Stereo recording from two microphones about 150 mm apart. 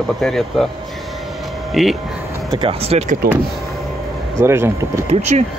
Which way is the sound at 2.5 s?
40° right (ahead or behind).